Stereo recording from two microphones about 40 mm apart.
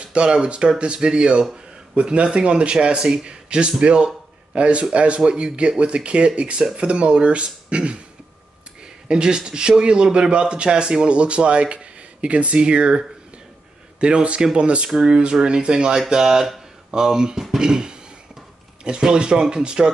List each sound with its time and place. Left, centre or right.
0.0 s a man's voice: right
6.6 s speech: centre
6.9 s speech: right
9.0 s a man's voice: right